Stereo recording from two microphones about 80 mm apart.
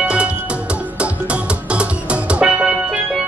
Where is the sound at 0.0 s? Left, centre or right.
Centre.